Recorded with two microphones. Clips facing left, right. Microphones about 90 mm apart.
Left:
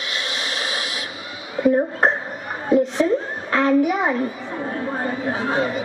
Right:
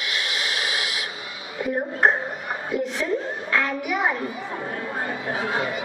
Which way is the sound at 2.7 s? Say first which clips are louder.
Left 10 dB; 35° left (ahead or behind).